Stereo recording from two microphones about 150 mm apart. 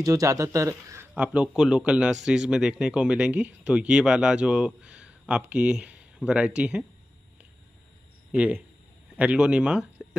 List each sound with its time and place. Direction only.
0.0 s speech: 20° right (ahead or behind)
1.1 s speech: 10° right (ahead or behind)
8.3 s speech: 10° right (ahead or behind)